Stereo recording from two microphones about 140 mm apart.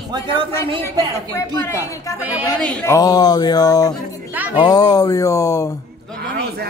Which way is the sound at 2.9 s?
25° left (ahead or behind).